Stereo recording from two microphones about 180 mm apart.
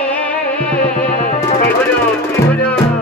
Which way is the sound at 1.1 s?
45° left (ahead or behind).